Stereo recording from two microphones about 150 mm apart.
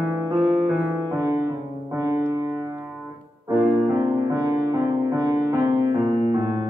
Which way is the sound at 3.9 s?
20° right (ahead or behind).